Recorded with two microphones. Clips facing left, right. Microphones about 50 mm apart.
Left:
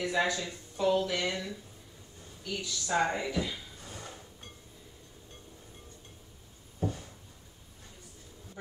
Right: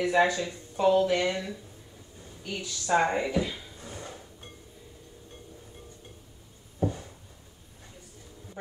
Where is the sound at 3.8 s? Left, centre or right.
Centre.